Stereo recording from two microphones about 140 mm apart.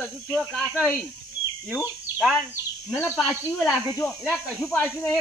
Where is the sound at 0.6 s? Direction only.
10° right (ahead or behind).